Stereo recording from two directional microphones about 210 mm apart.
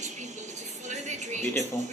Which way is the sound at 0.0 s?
35° right (ahead or behind).